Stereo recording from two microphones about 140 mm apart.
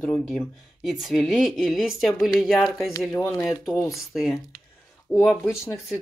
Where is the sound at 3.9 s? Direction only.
Centre (ahead or behind).